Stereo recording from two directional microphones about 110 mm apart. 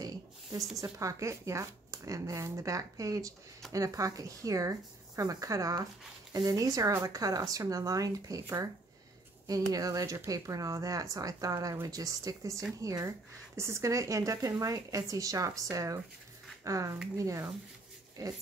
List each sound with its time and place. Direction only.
0.0 s speech: 30° right (ahead or behind)